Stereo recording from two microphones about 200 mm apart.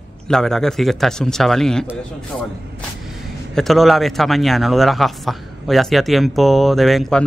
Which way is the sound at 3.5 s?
Centre (ahead or behind).